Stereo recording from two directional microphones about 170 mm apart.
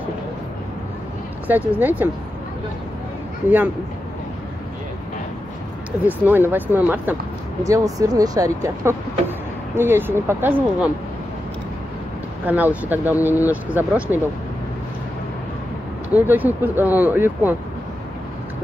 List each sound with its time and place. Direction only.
1.5 s speech: 10° right (ahead or behind)
3.4 s speech: 10° right (ahead or behind)
6.0 s speech: 10° right (ahead or behind)
12.4 s speech: 10° right (ahead or behind)
16.1 s speech: 10° right (ahead or behind)